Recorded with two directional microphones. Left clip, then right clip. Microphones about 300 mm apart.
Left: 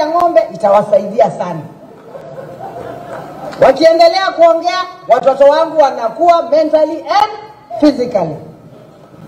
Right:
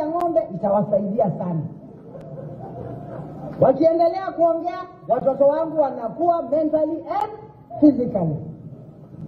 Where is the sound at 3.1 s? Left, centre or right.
Centre.